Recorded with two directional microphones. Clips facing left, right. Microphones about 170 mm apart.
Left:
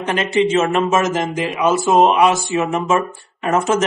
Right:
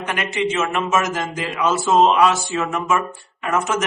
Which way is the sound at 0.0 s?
30° left (ahead or behind).